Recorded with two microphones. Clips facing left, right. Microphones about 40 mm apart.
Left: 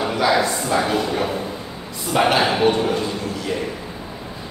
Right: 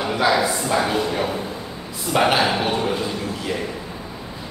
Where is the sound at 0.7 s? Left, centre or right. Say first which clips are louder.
Left 1 dB; centre.